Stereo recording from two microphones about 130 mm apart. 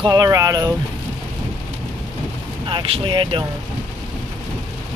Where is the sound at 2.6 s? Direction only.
45° right (ahead or behind).